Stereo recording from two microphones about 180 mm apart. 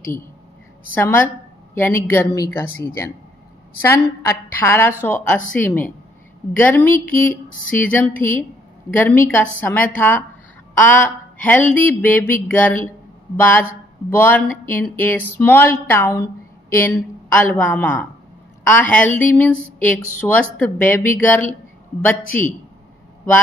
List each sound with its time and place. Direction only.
0.9 s speech: 10° left (ahead or behind)
11.4 s speech: 10° left (ahead or behind)